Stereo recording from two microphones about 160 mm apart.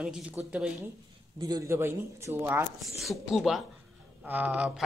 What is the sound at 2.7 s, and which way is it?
Speech, centre (ahead or behind).